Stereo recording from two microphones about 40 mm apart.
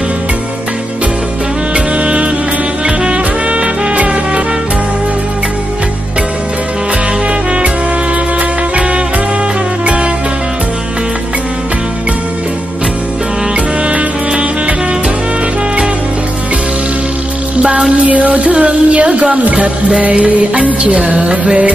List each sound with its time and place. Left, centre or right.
2.0 s music: right
8.4 s music: right
13.8 s music: right
17.6 s music: right
17.9 s music: right
20.8 s music: right
21.1 s music: right